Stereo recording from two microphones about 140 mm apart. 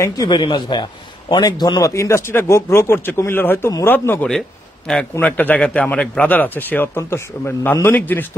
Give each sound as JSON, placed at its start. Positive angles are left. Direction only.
{"t": 0.0, "sound": "speech", "side_deg": 30}
{"t": 4.3, "sound": "a sound", "side_deg": 5}
{"t": 5.1, "sound": "speech", "side_deg": 10}